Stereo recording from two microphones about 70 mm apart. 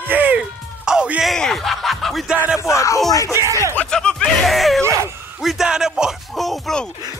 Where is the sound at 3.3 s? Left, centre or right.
Right.